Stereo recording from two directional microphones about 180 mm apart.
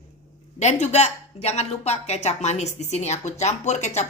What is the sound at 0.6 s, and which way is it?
A woman's voice, 40° left (ahead or behind).